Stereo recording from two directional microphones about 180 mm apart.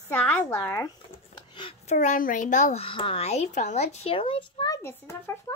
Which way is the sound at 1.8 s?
40° left (ahead or behind).